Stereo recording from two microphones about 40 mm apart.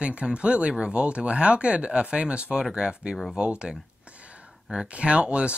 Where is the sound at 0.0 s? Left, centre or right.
Right.